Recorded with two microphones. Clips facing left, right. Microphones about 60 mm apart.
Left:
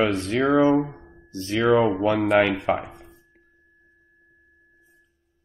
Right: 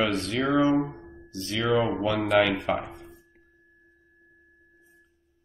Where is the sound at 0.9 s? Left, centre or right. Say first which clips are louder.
Left 2 dB; left.